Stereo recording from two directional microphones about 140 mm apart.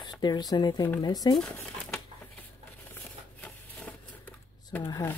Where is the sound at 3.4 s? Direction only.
10° left (ahead or behind).